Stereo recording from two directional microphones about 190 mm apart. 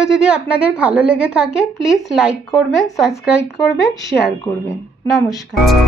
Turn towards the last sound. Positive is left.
turn(degrees=0)  # may be behind; listen again after turning